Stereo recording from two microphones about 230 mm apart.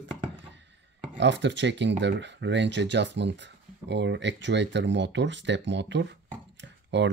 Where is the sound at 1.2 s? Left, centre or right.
Right.